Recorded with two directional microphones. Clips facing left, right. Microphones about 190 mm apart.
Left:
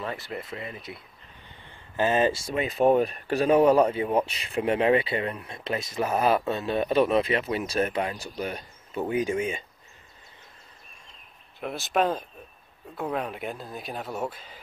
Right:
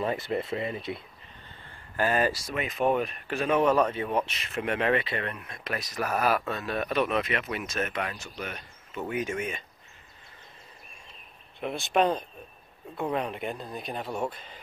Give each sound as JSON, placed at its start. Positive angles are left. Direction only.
{"t": 0.0, "sound": "speech", "side_deg": -20}
{"t": 1.4, "sound": "speech", "side_deg": 15}
{"t": 11.6, "sound": "speech", "side_deg": 0}